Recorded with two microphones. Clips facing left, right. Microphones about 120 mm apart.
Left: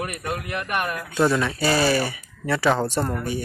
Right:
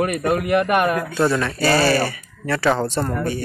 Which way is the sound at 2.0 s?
10° left (ahead or behind).